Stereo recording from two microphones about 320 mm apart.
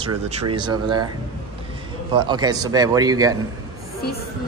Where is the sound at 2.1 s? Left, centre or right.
Centre.